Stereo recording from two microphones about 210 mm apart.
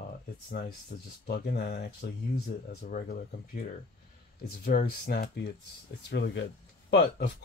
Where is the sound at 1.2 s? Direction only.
50° left (ahead or behind).